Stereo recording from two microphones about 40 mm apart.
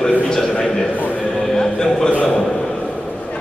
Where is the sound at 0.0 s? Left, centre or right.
Centre.